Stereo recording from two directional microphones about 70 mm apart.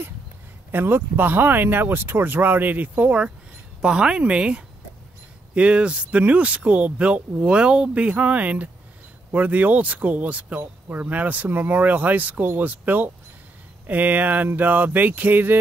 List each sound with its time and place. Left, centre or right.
0.7 s speech: right